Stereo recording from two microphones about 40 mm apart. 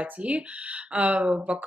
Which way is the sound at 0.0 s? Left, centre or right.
Right.